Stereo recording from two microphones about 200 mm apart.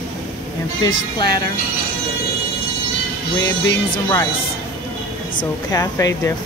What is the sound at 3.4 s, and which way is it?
Speech, 15° left (ahead or behind).